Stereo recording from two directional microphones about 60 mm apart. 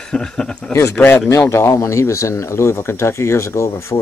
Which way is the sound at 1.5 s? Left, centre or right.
Left.